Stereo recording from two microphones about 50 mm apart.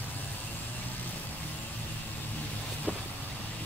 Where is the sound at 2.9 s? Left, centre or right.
Right.